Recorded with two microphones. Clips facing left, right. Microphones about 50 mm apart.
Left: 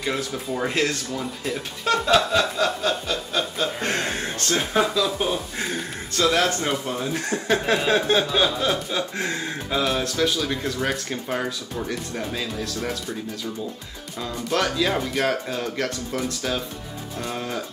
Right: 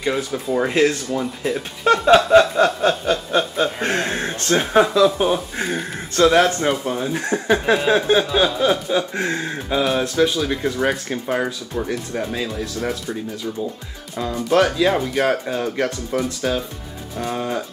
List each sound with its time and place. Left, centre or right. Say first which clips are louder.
0.0 s speech: right 4 dB; centre
2.0 s chuckle: right 9 dB; right
4.1 s speech: right 5 dB; centre
14.1 s speech: right 7 dB; centre